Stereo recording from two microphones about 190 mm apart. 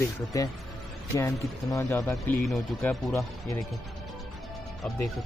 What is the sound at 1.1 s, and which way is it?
Speech, 15° left (ahead or behind).